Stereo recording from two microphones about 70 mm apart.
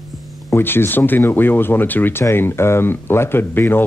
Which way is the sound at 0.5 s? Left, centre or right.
Left.